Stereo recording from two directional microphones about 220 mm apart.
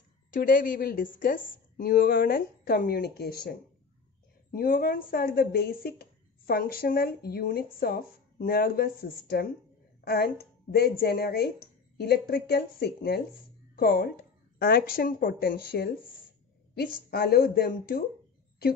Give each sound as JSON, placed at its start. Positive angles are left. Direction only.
{"t": 0.3, "sound": "a woman's voice", "side_deg": 40}